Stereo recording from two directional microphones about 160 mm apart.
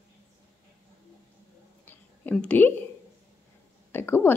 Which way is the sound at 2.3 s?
10° left (ahead or behind).